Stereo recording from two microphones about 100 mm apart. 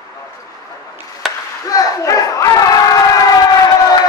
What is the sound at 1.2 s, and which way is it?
Chop, 5° right (ahead or behind).